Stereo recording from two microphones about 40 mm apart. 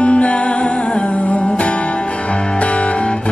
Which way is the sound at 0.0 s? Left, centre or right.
Left.